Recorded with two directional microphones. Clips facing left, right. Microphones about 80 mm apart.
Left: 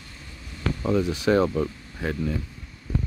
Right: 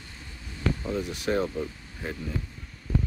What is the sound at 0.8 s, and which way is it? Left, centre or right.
Speech, left.